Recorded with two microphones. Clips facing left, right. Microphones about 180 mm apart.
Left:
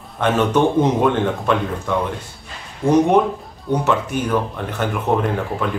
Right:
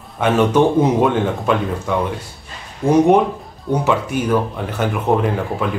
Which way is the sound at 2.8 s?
20° right (ahead or behind).